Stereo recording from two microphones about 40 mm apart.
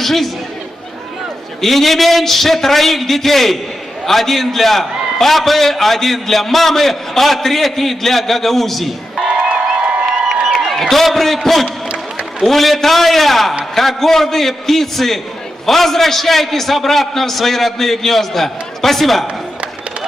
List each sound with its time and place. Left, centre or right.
0.0 s a man's voice: centre
1.6 s a man's voice: centre
9.3 s music: right
10.2 s a sound: centre
11.6 s a sound: right
12.4 s a man's voice: centre